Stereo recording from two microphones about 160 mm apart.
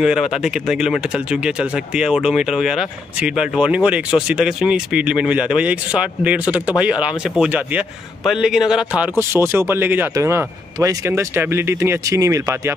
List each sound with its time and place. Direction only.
0.0 s speech: 5° right (ahead or behind)
9.2 s speech: 15° right (ahead or behind)